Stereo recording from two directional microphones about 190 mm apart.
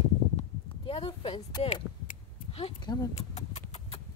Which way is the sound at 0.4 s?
30° left (ahead or behind).